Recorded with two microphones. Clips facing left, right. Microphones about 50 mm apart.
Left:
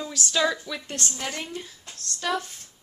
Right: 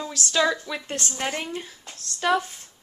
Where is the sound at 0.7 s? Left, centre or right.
Centre.